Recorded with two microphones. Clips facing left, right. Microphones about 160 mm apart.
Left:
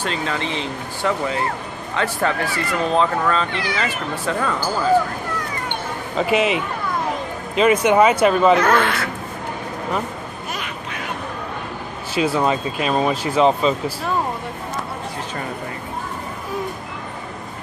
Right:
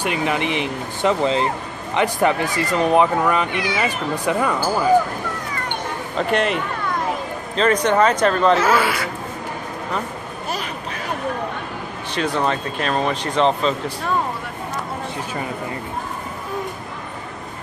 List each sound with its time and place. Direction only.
0.0 s speech: 15° right (ahead or behind)
6.1 s speech: 5° left (ahead or behind)
8.5 s speech: 5° right (ahead or behind)
12.1 s speech: 5° left (ahead or behind)